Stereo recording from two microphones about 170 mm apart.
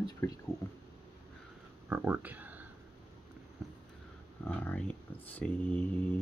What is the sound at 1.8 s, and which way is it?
Speech, 10° right (ahead or behind).